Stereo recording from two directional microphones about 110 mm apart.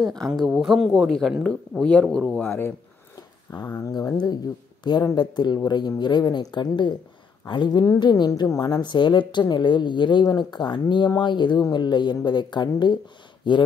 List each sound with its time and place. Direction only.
0.0 s speech: centre (ahead or behind)
3.2 s a sound: 35° left (ahead or behind)
3.8 s speech: 35° left (ahead or behind)